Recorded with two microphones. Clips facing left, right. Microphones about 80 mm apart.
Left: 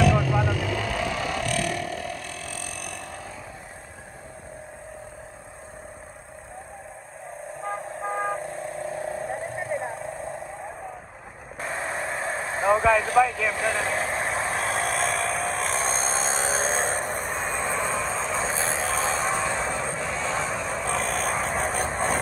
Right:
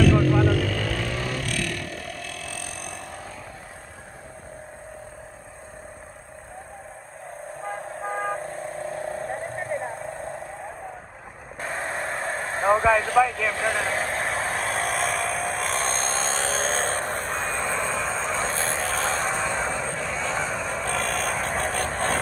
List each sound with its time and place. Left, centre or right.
0.0 s vehicle: centre
1.4 s burping: left
2.3 s vehicle: left
8.0 s vehicle: centre
11.6 s vehicle: centre